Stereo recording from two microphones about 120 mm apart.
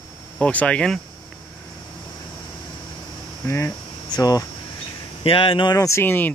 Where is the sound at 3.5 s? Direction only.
25° left (ahead or behind).